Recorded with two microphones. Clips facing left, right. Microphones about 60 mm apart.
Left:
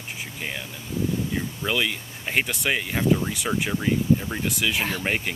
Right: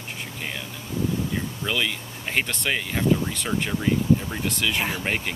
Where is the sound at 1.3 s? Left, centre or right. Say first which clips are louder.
Left 1 dB; centre.